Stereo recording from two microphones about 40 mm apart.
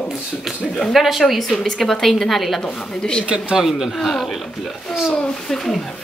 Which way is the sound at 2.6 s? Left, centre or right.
Left.